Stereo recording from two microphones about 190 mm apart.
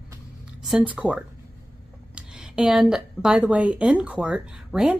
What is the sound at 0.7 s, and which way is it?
Speech, 5° right (ahead or behind).